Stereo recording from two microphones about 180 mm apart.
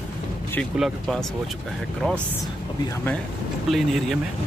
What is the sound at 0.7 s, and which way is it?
Speech, centre (ahead or behind).